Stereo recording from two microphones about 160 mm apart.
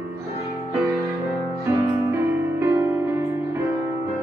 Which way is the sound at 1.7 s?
20° right (ahead or behind).